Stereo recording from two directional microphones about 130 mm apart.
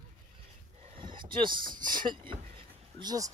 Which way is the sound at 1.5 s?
90° right.